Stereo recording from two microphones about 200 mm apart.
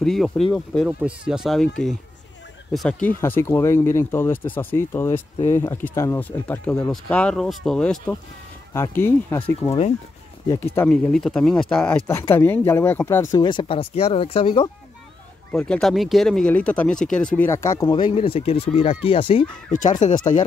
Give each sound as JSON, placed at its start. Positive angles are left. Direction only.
{"t": 0.0, "sound": "speech", "side_deg": 0}
{"t": 9.7, "sound": "speech", "side_deg": 30}
{"t": 10.5, "sound": "speech", "side_deg": 10}
{"t": 15.5, "sound": "speech", "side_deg": 5}
{"t": 19.7, "sound": "speech", "side_deg": 40}